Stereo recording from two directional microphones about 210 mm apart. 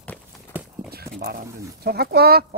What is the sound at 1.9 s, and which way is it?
Speech, 50° right (ahead or behind).